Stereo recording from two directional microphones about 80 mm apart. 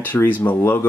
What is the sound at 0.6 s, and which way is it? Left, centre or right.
Speech, left.